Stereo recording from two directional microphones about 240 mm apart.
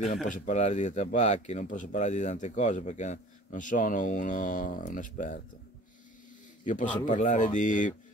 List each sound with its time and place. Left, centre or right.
0.3 s speech: left
6.6 s a man's voice: left